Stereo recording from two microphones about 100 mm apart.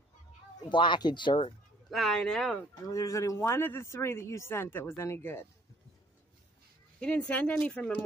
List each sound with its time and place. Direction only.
0.6 s speech: 50° left (ahead or behind)
1.9 s speech: centre (ahead or behind)
2.9 s speech: 35° left (ahead or behind)
7.0 s speech: 10° left (ahead or behind)